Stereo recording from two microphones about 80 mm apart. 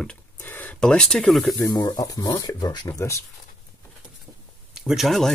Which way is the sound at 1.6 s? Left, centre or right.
Left.